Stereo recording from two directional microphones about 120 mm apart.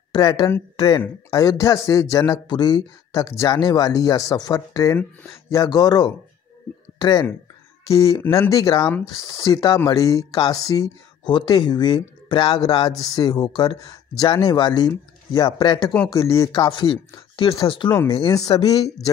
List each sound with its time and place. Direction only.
0.1 s speech: 35° left (ahead or behind); by 5.7 s 20° left (ahead or behind)
5.7 s speech: 35° left (ahead or behind)
16.2 s speech: 25° left (ahead or behind)
16.5 s speech: 45° left (ahead or behind)
18.2 s speech: 30° left (ahead or behind)